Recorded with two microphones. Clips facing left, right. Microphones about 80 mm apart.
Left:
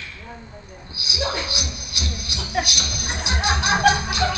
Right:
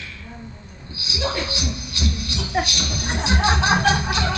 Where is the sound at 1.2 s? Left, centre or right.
Centre.